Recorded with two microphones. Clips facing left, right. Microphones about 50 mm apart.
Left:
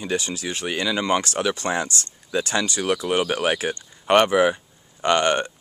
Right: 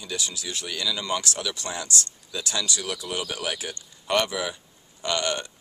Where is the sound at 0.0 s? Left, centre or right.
Left.